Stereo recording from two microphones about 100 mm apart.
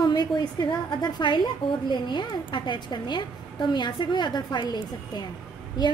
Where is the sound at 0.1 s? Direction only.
45° left (ahead or behind).